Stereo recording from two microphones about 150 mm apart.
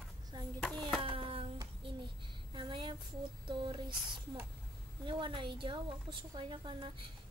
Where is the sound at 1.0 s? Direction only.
35° right (ahead or behind).